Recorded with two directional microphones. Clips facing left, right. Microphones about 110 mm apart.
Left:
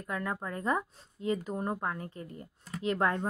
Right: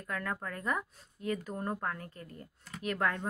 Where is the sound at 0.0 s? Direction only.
20° left (ahead or behind).